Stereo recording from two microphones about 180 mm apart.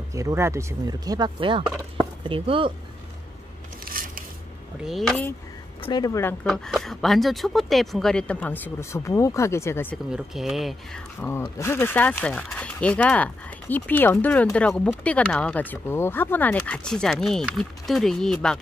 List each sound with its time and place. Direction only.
0.1 s speech: 15° right (ahead or behind)
3.8 s biting: 50° right (ahead or behind)
4.8 s speech: centre (ahead or behind)
5.8 s speech: 25° left (ahead or behind)
6.4 s speech: centre (ahead or behind)
10.1 s speech: centre (ahead or behind)
11.1 s speech: 15° left (ahead or behind)